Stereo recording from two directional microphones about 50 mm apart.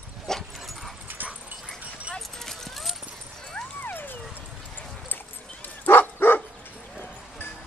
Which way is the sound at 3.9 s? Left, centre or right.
Left.